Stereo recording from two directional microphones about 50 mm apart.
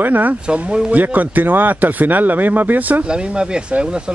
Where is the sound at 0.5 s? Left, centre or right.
Right.